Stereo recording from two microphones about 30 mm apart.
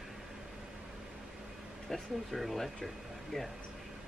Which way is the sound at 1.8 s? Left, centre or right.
Centre.